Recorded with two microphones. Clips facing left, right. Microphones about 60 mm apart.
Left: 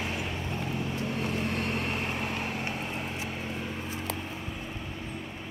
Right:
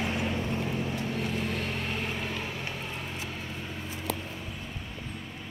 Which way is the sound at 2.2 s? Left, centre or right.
Left.